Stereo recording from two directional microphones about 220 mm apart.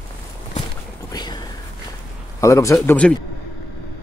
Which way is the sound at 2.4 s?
15° left (ahead or behind).